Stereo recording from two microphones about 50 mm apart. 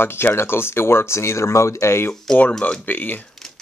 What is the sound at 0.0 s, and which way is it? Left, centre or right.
Speech, left.